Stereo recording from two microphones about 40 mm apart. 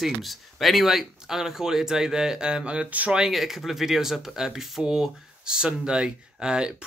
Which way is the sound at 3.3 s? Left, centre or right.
Centre.